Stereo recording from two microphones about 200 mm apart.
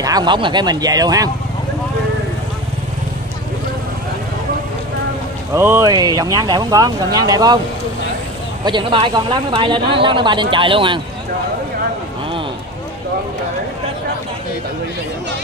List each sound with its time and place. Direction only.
0.0 s speech: 20° right (ahead or behind)
5.5 s speech: 15° right (ahead or behind)
8.6 s speech: 25° right (ahead or behind)